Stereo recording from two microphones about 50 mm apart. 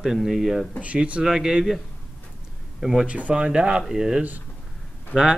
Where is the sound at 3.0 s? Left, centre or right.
Right.